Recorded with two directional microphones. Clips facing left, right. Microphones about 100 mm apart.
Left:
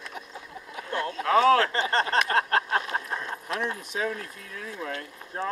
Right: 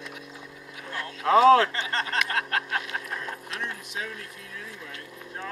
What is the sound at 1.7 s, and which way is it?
Speech, 35° left (ahead or behind).